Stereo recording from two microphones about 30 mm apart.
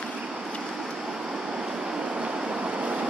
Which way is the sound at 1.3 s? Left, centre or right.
Right.